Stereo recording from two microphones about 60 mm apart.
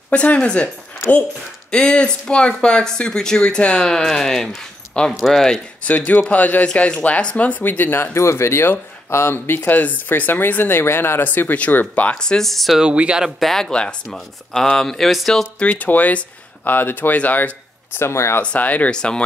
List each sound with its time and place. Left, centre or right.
0.1 s speech: centre
1.7 s speech: centre
4.6 s a sound: centre
5.2 s speech: centre
5.9 s speech: left; by 12.7 s centre
12.7 s speech: centre
13.4 s speech: centre
15.7 s speech: left
17.9 s speech: left
18.4 s speech: left